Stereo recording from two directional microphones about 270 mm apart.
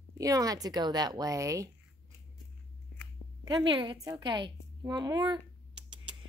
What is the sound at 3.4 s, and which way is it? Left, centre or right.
A woman's voice, centre.